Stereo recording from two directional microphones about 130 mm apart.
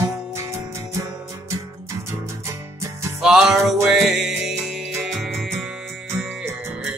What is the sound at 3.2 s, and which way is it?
Music, 5° right (ahead or behind).